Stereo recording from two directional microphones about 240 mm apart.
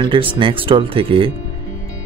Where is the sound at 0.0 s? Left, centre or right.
Right.